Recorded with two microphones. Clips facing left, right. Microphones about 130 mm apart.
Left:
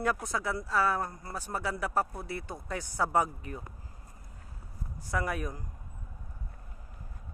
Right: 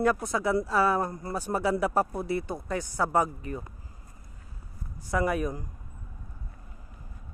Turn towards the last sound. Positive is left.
turn(degrees=-5)  # may be behind; listen again after turning